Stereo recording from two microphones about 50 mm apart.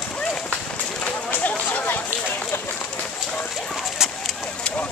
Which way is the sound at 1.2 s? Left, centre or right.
Left.